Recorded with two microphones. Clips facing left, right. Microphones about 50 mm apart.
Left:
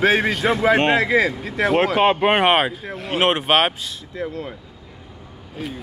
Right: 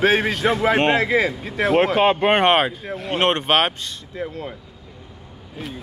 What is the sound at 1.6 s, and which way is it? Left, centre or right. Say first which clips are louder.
Speech: even; centre.